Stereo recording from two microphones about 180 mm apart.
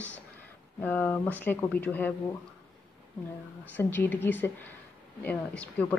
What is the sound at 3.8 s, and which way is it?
Speech, 10° left (ahead or behind).